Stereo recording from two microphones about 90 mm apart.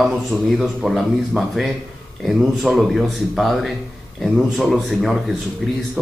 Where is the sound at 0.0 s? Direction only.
Centre (ahead or behind).